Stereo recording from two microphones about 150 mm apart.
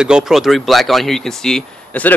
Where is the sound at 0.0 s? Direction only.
5° right (ahead or behind).